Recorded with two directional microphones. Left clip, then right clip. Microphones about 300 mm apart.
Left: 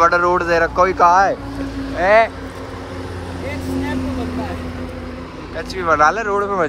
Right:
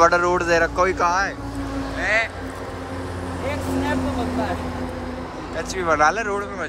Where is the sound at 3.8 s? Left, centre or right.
Right.